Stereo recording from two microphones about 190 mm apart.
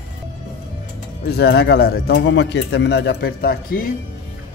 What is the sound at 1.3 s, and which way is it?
Speech, 60° left (ahead or behind).